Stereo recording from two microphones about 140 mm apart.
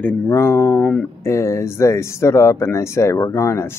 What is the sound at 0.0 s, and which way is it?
A man's voice, 20° left (ahead or behind).